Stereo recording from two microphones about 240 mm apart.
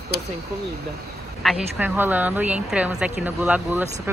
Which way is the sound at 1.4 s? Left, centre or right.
Centre.